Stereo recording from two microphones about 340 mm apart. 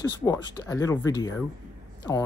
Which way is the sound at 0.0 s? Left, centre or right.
Centre.